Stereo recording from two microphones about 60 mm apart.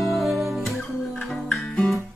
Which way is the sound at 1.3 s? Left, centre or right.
Centre.